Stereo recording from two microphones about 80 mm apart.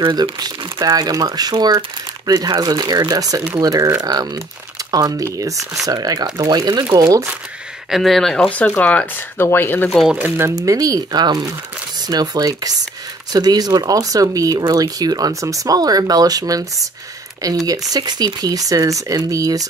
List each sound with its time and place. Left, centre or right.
0.0 s speech: right
7.9 s speech: centre
8.5 s speech: centre
10.1 s speech: right
10.5 s speech: right